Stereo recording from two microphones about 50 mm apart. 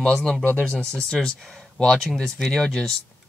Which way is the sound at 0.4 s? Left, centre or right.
Left.